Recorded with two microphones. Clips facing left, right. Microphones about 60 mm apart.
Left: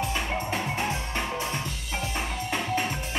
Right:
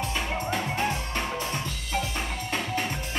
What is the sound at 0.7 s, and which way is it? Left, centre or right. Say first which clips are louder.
Music: right 1 dB; centre.